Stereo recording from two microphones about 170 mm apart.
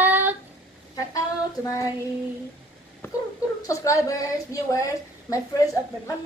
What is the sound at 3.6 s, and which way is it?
A woman's voice, 20° left (ahead or behind).